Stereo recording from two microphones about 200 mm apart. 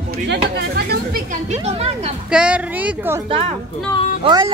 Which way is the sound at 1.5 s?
30° right (ahead or behind).